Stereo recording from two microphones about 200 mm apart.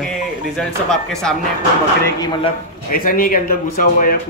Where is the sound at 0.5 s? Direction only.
5° left (ahead or behind).